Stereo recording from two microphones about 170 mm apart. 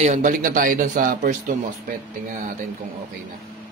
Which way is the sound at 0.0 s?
45° right (ahead or behind).